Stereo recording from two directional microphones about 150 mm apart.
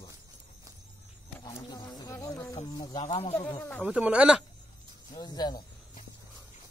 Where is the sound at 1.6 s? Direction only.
25° left (ahead or behind).